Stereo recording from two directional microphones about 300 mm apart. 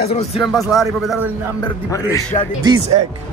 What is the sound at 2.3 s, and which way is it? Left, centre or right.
Speech, centre.